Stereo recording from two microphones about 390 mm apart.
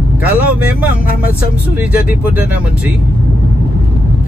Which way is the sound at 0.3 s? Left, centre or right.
Centre.